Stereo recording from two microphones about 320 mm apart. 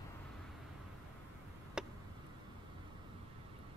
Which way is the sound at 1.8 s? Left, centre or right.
Centre.